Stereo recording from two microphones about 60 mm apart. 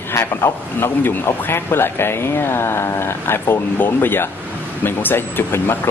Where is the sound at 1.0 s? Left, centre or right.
Left.